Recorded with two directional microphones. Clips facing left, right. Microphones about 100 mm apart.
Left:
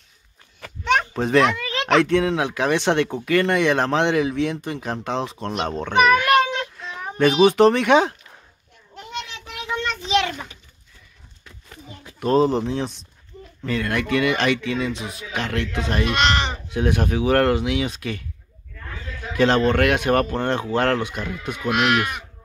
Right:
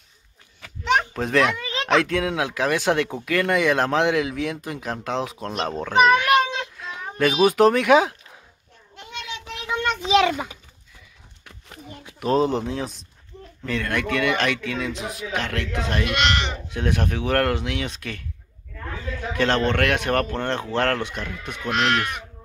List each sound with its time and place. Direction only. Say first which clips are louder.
0.6 s a sound: left 1 dB; 5° right (ahead or behind)
1.9 s speech: left 3 dB; centre (ahead or behind)
6.8 s a sound: left 3 dB; centre (ahead or behind)
12.2 s speech: left 2 dB; centre (ahead or behind)
16.1 s speech: left 4 dB; 35° left (ahead or behind)
16.6 s speech: left 3 dB; 5° left (ahead or behind)
19.3 s speech: left 4 dB; 5° left (ahead or behind)